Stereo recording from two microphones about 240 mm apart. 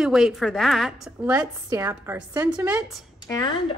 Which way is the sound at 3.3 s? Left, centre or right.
Centre.